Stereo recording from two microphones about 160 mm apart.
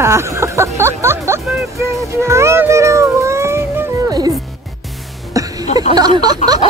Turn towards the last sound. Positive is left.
turn(degrees=-25)  # may be behind; listen again after turning